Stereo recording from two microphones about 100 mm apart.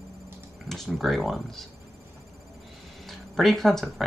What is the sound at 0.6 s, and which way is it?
Speech, centre (ahead or behind).